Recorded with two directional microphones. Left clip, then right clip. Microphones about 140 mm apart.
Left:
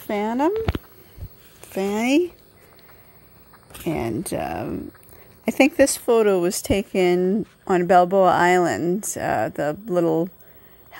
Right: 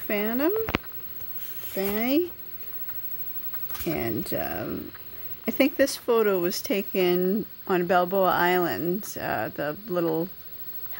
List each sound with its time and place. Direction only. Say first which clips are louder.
0.0 s speech: left 4 dB; 40° left (ahead or behind)
1.8 s speech: left 5 dB; 55° left (ahead or behind)
3.8 s speech: left 4 dB; 50° left (ahead or behind)
5.4 s speech: left 6 dB; 55° left (ahead or behind)